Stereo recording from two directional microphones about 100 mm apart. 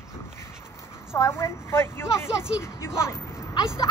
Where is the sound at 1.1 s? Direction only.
25° left (ahead or behind).